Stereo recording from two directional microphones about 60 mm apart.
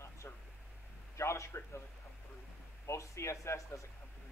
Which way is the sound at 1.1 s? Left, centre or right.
Left.